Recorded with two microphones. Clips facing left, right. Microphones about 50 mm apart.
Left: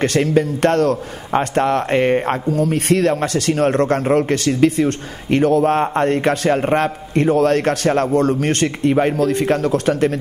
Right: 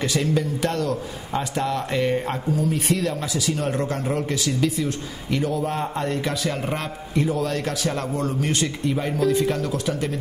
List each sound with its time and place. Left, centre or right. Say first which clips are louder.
0.0 s a man's voice: left 7 dB; left